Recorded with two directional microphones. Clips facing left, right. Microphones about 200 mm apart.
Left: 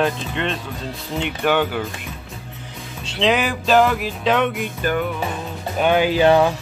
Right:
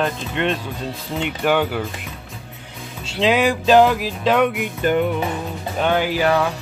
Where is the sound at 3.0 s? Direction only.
5° right (ahead or behind).